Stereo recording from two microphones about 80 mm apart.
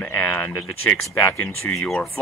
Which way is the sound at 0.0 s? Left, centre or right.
Left.